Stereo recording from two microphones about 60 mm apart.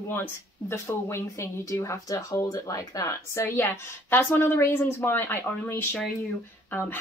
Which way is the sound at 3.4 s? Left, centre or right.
Left.